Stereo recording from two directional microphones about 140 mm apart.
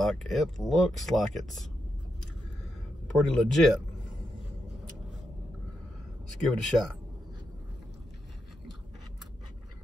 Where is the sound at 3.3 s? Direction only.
Centre (ahead or behind).